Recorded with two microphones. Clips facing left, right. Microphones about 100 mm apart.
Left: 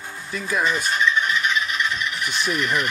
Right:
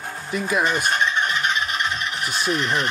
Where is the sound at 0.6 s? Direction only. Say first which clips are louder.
Left 2 dB; 60° right (ahead or behind).